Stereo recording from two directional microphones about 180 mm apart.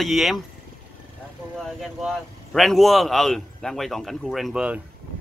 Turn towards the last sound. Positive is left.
turn(degrees=-5)  # may be behind; listen again after turning